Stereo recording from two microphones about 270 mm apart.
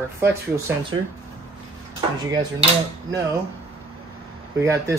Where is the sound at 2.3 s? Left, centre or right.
Centre.